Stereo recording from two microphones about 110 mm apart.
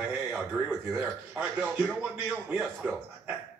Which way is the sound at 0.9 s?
15° right (ahead or behind).